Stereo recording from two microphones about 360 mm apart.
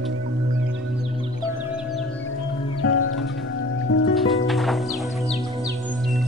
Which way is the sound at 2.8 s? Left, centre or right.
Left.